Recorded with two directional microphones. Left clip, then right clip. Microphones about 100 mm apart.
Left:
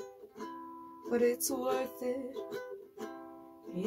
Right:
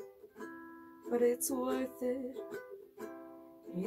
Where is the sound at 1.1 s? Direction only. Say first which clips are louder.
Left 1 dB; 30° left (ahead or behind).